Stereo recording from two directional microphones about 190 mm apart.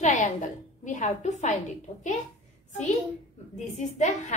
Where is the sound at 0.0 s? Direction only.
40° left (ahead or behind).